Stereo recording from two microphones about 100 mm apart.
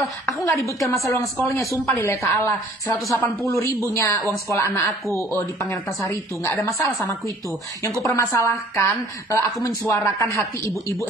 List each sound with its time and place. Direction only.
0.0 s a woman's voice: centre (ahead or behind)
0.5 s a woman's voice: 30° left (ahead or behind)
3.9 s a woman's voice: 30° left (ahead or behind)
6.0 s a woman's voice: 30° left (ahead or behind)